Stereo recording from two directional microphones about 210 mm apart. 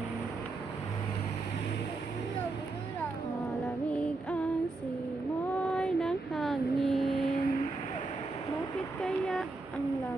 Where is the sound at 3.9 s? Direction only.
5° left (ahead or behind).